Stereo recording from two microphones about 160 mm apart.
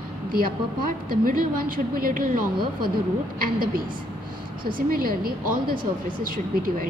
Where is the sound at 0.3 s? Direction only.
65° right (ahead or behind).